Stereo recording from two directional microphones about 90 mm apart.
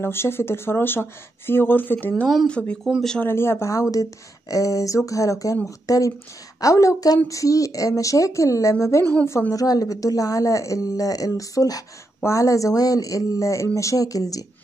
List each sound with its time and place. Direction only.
0.0 s speech: 25° left (ahead or behind); by 3.2 s centre (ahead or behind)
3.2 s speech: 25° left (ahead or behind)